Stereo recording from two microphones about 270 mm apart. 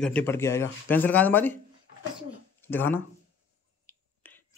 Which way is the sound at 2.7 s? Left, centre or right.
Centre.